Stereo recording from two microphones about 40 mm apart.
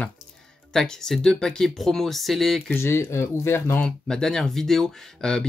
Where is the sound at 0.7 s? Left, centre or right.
Centre.